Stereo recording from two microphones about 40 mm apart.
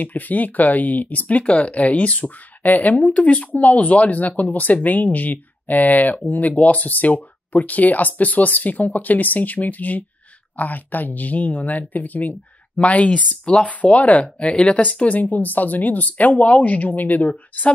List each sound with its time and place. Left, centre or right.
0.0 s speech: left
1.4 s speech: left
12.7 s speech: left